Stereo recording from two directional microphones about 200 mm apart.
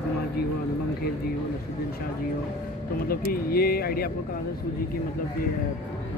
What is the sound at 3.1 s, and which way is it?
Speech, 50° left (ahead or behind).